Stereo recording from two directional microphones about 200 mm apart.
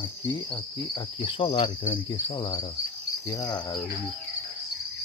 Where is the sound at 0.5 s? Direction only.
20° left (ahead or behind).